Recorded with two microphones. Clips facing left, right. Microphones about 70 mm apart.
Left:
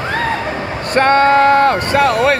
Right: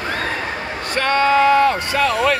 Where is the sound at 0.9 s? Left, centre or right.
Left.